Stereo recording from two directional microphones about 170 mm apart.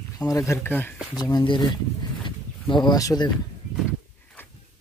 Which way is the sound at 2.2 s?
25° left (ahead or behind).